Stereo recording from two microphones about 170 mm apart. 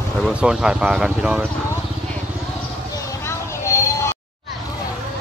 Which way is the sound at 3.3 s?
15° left (ahead or behind).